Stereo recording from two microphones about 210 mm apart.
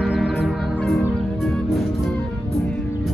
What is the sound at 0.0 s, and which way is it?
Music, 5° right (ahead or behind).